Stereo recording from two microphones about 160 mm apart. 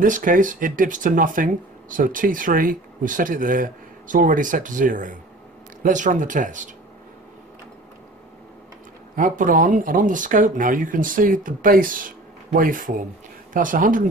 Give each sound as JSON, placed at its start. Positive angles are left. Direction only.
{"t": 0.0, "sound": "speech", "side_deg": -55}
{"t": 9.1, "sound": "speech", "side_deg": -55}